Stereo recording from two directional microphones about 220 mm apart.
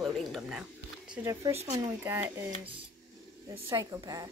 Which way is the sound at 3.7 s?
15° right (ahead or behind).